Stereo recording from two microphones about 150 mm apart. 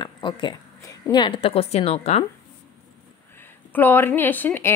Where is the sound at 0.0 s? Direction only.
30° left (ahead or behind).